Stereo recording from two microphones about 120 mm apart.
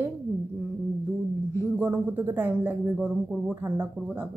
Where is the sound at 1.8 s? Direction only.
15° right (ahead or behind).